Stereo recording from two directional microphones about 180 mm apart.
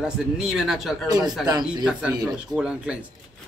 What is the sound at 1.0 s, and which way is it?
Speech, 20° right (ahead or behind).